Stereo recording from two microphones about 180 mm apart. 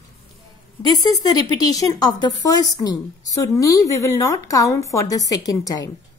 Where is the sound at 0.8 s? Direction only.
20° left (ahead or behind).